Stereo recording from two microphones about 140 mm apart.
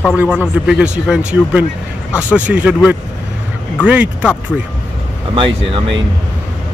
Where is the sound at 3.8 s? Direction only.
10° right (ahead or behind).